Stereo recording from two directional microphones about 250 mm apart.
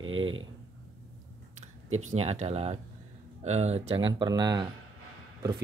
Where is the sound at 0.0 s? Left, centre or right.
Right.